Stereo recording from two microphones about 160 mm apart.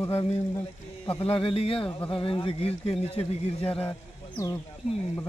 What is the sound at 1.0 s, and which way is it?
Speech, 35° left (ahead or behind).